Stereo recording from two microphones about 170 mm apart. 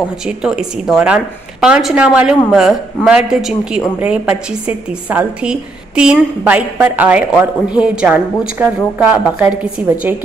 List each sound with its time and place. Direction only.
0.4 s a woman's voice: 5° right (ahead or behind)